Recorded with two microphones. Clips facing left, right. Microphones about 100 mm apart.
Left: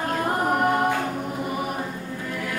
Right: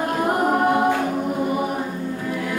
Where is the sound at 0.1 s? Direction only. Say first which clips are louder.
Right 3 dB; 15° right (ahead or behind).